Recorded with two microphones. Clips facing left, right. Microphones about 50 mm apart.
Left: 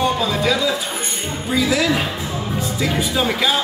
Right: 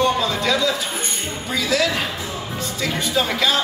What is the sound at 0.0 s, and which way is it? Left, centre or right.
Speech, centre.